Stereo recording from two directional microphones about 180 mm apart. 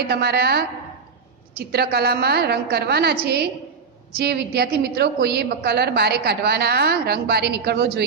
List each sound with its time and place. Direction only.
0.0 s a woman's voice: 60° right (ahead or behind)
4.2 s a woman's voice: 60° right (ahead or behind)